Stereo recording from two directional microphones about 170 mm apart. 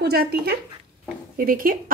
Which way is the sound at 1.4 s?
55° right (ahead or behind).